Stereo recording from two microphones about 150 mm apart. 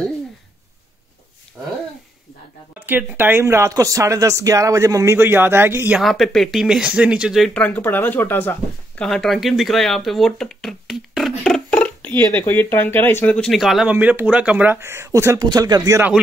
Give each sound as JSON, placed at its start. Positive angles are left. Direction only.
{"t": 1.6, "sound": "a sound", "side_deg": -10}
{"t": 2.9, "sound": "speech", "side_deg": -10}
{"t": 5.9, "sound": "speech", "side_deg": 0}
{"t": 7.6, "sound": "speech", "side_deg": 10}